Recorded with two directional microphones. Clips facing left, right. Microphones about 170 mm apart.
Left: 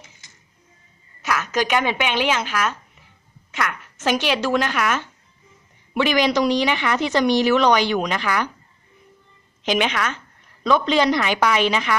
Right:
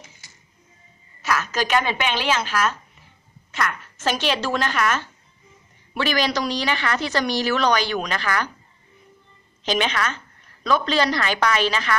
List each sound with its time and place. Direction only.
1.2 s a woman's voice: 15° left (ahead or behind)
9.7 s a woman's voice: 15° left (ahead or behind)